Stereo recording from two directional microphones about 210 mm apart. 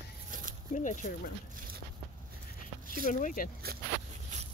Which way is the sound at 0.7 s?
35° left (ahead or behind).